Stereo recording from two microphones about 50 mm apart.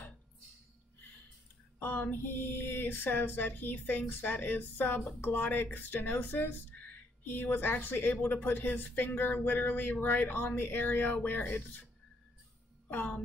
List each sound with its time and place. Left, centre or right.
1.8 s speech: left